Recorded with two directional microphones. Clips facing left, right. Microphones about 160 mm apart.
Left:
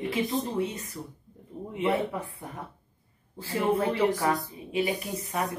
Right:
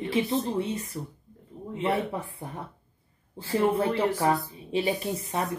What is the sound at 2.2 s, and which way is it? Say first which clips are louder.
Speech: right 2 dB; 30° right (ahead or behind).